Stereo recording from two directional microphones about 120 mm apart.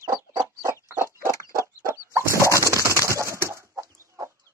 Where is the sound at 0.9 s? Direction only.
20° right (ahead or behind).